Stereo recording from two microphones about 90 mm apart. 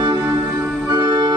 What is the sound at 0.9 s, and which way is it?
Organ, 55° right (ahead or behind).